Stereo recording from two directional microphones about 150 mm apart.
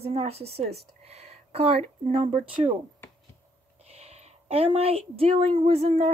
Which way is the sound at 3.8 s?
45° right (ahead or behind).